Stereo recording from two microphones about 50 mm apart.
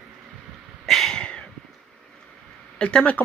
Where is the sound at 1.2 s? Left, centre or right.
Centre.